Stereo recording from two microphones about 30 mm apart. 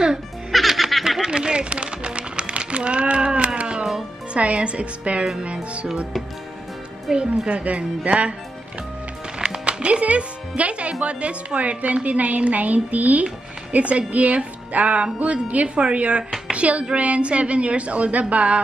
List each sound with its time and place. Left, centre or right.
0.5 s music: centre
1.2 s music: right
4.3 s speech: right
5.4 s music: right
7.1 s speech: centre
7.4 s speech: right
9.4 s speech: right
13.7 s speech: right
16.5 s music: right
16.9 s speech: right